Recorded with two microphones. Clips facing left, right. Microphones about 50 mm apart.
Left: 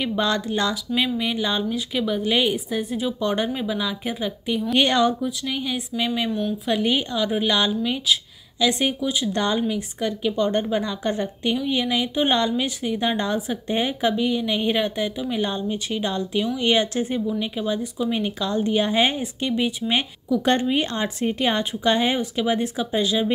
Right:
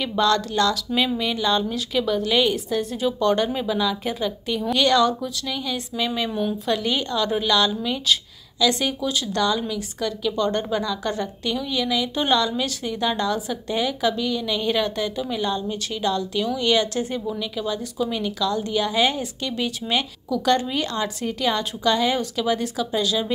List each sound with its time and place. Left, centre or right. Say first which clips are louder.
0.0 s speech: right 2 dB; centre
4.7 s a woman's voice: right 1 dB; left
6.3 s speech: right 1 dB; centre
6.7 s a woman's voice: left 3 dB; centre